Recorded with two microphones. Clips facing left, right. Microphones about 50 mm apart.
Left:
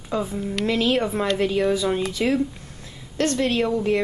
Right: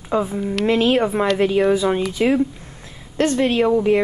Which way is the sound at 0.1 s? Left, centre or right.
Centre.